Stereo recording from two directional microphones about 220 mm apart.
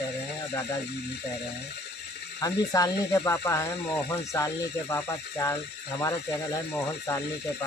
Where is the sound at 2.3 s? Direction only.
15° left (ahead or behind).